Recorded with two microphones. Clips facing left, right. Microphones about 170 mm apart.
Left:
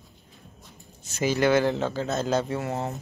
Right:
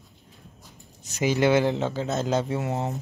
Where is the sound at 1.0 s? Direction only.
20° right (ahead or behind).